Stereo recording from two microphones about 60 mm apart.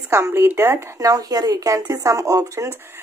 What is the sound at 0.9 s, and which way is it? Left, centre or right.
Speech, right.